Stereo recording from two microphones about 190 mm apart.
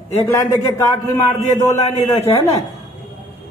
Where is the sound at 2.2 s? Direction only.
35° left (ahead or behind).